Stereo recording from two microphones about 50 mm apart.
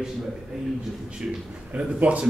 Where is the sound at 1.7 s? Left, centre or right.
Right.